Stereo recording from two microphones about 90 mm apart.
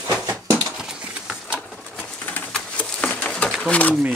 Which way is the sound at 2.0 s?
20° left (ahead or behind).